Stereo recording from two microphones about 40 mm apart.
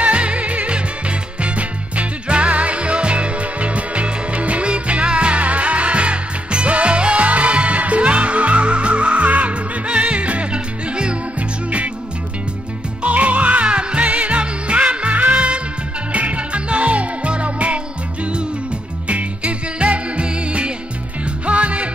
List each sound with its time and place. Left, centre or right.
0.0 s music: right
13.0 s music: right